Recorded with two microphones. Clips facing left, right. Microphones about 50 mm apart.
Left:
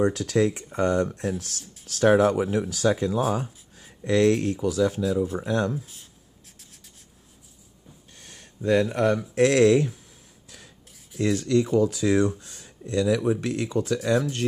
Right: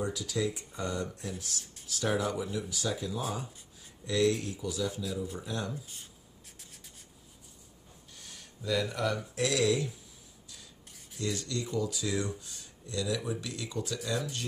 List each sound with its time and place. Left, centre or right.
0.0 s speech: left
1.6 s speech: centre
1.9 s speech: left
8.2 s a sound: left
9.3 s speech: left
11.1 s speech: left
11.9 s speech: left